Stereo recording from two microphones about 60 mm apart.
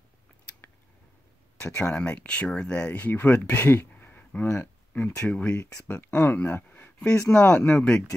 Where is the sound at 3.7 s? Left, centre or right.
Left.